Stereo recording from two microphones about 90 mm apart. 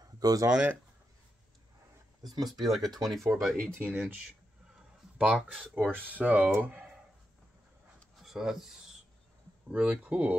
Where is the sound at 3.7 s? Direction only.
20° right (ahead or behind).